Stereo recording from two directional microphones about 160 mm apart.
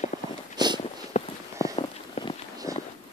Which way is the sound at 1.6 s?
35° left (ahead or behind).